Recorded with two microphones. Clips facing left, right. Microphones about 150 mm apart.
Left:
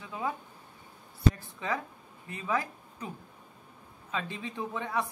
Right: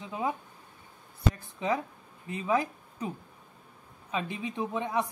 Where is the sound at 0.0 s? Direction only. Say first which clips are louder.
Right 3 dB; 20° right (ahead or behind).